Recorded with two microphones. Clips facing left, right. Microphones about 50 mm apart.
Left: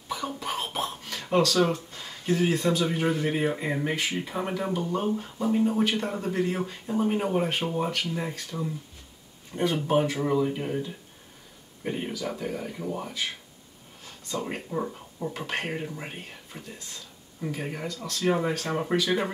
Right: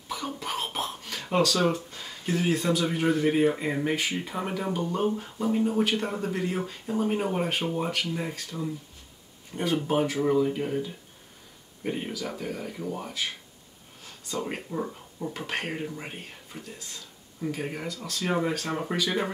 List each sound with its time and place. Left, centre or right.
0.1 s a sound: centre
2.0 s speech: centre
7.2 s speech: centre
7.5 s speech: centre
7.8 s speech: centre
9.5 s speech: centre
9.8 s speech: centre
11.8 s speech: centre
14.3 s speech: centre
18.1 s speech: centre
18.4 s speech: centre